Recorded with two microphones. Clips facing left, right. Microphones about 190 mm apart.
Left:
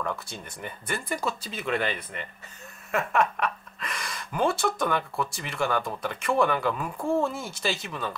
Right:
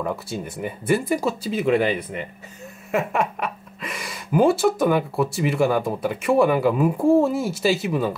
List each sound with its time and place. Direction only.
0.0 s speech: 5° right (ahead or behind)
7.0 s speech: 35° right (ahead or behind)
7.2 s speech: 5° right (ahead or behind)